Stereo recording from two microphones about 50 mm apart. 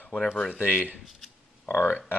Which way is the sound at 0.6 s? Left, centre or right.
Right.